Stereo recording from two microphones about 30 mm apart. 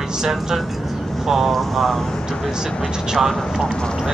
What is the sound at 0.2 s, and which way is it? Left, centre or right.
Speech, centre.